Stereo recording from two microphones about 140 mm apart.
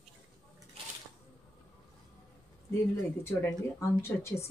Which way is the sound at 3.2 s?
15° left (ahead or behind).